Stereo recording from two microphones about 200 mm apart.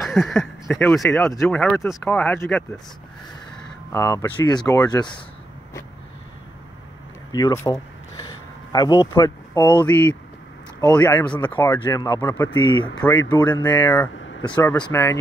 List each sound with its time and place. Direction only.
0.0 s speech: centre (ahead or behind)
3.9 s speech: 15° left (ahead or behind)
7.3 s speech: 20° left (ahead or behind)
12.5 s speech: 25° left (ahead or behind)
13.0 s speech: 10° left (ahead or behind)